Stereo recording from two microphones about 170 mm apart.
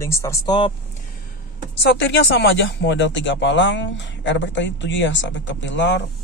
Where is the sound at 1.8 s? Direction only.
90° left.